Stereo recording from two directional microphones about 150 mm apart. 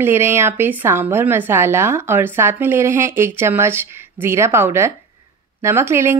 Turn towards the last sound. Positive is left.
turn(degrees=-15)  # may be behind; listen again after turning